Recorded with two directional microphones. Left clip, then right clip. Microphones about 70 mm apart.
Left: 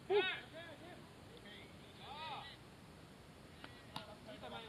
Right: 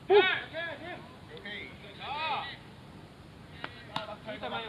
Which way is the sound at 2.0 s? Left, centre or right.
Centre.